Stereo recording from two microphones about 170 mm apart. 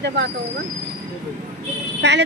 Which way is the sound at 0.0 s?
90° right.